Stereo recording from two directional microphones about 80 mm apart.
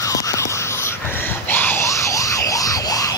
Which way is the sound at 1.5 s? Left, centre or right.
Left.